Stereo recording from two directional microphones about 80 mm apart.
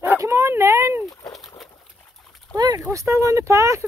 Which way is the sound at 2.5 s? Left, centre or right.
Right.